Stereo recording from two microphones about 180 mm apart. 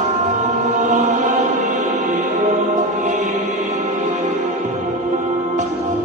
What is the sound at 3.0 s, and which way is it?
Music, 45° right (ahead or behind).